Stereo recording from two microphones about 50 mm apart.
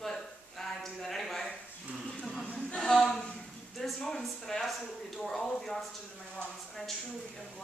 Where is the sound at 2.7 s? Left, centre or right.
Centre.